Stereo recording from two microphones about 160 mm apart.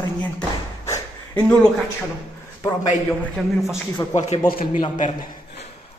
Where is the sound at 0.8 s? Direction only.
20° left (ahead or behind).